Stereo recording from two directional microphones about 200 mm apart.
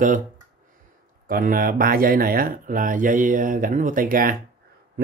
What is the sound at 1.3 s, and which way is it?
Speech, 45° right (ahead or behind).